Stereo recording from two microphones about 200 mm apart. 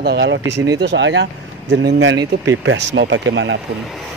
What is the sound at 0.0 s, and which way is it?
Speech, 55° right (ahead or behind).